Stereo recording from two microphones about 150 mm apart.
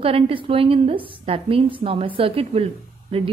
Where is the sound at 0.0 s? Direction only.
35° right (ahead or behind).